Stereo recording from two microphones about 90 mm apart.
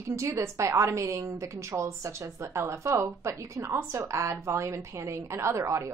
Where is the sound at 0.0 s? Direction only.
30° right (ahead or behind).